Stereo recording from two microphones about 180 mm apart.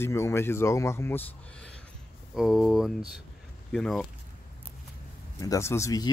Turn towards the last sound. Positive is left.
turn(degrees=20)  # may be behind; listen again after turning